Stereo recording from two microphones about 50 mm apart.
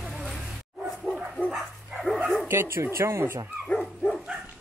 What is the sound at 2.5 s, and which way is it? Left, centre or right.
Speech, right.